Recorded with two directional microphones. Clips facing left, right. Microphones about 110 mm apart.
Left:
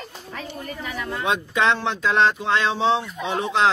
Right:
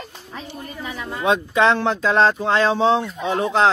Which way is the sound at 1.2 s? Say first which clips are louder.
Right 5 dB; 35° right (ahead or behind).